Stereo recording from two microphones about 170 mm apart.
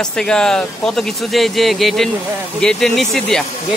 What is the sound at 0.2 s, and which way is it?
Speech, 5° left (ahead or behind).